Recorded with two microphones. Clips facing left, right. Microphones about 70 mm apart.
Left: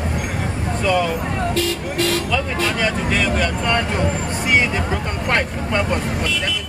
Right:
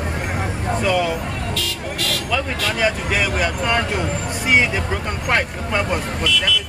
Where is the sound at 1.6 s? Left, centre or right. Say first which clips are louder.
Left 6 dB; left.